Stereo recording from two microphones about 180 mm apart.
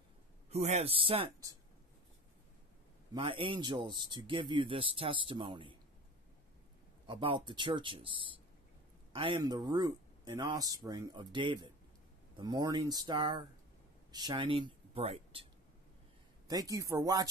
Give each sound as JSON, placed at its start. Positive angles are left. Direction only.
{"t": 0.5, "sound": "speech", "side_deg": -35}
{"t": 3.1, "sound": "speech", "side_deg": -30}
{"t": 7.1, "sound": "speech", "side_deg": -30}
{"t": 16.4, "sound": "speech", "side_deg": -20}